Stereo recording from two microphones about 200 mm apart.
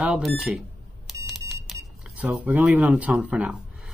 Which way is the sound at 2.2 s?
5° right (ahead or behind).